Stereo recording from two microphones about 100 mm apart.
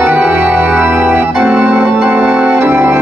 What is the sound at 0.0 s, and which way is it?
Organ, 15° right (ahead or behind).